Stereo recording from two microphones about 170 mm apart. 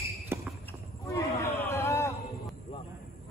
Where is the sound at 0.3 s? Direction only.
15° right (ahead or behind).